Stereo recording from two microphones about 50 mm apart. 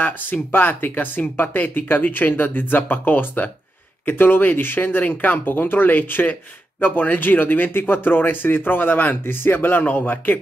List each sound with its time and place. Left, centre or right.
0.0 s speech: left